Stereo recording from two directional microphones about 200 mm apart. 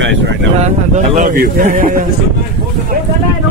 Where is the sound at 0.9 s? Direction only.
40° right (ahead or behind).